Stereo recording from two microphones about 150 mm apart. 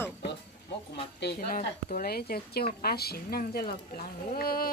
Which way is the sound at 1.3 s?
70° left (ahead or behind).